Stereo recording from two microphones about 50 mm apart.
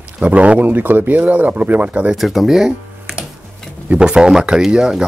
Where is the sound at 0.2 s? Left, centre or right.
Right.